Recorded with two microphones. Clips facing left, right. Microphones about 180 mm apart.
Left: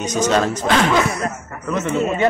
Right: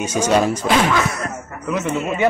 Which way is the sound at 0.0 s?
10° right (ahead or behind).